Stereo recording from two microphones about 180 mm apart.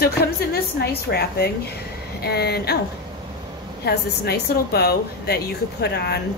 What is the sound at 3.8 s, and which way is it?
A woman's voice, 65° left (ahead or behind).